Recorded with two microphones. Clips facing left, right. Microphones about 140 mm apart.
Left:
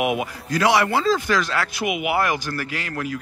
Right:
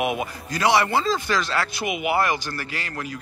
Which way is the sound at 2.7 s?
70° left (ahead or behind).